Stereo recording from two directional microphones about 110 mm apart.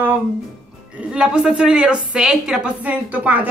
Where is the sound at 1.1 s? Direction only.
10° right (ahead or behind).